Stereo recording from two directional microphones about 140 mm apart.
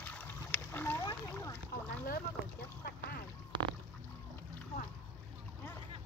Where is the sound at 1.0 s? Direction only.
25° left (ahead or behind).